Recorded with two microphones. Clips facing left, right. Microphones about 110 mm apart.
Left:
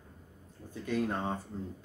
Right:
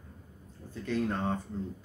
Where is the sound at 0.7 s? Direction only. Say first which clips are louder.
Right 1 dB; 10° left (ahead or behind).